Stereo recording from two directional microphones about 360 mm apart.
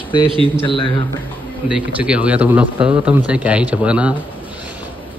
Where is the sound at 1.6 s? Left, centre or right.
Centre.